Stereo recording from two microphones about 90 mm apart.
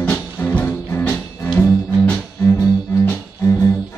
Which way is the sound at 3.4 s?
35° left (ahead or behind).